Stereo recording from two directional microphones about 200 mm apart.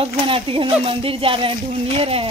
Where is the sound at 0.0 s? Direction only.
25° right (ahead or behind).